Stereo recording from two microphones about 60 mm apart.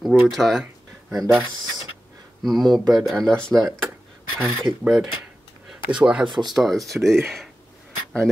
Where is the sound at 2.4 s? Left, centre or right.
Centre.